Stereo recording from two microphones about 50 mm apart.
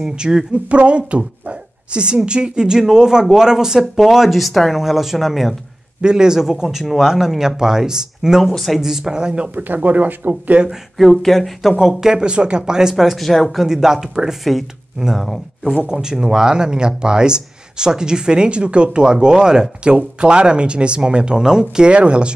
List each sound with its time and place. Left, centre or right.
0.0 s a woman's voice: centre
5.9 s speech: centre
8.5 s speech: centre
8.7 s speech: centre
9.8 s speech: right
11.0 s speech: centre
11.9 s speech: centre
12.9 s speech: centre
13.7 s speech: centre
15.9 s speech: centre